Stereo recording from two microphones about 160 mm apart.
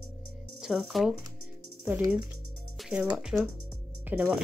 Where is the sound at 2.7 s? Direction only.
5° right (ahead or behind).